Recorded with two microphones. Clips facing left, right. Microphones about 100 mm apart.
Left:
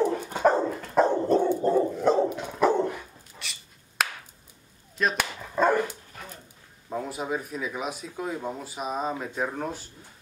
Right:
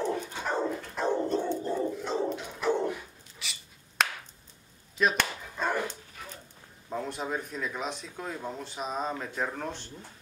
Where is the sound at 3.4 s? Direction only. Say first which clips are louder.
Left 1 dB; centre (ahead or behind).